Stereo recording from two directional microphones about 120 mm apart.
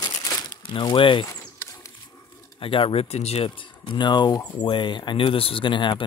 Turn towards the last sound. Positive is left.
turn(degrees=40)  # may be behind; listen again after turning